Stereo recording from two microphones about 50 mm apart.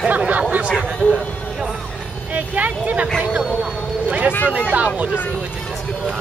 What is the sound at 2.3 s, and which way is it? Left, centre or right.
Speech, right.